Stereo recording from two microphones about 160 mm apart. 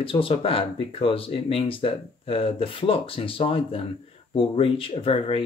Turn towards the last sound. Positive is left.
turn(degrees=35)  # may be behind; listen again after turning